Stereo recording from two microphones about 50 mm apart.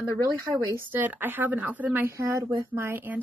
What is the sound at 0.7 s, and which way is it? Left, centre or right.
Speech, right.